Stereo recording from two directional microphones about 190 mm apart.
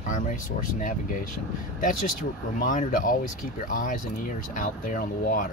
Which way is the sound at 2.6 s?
45° left (ahead or behind).